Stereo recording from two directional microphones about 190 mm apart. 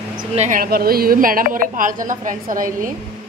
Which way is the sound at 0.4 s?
45° right (ahead or behind).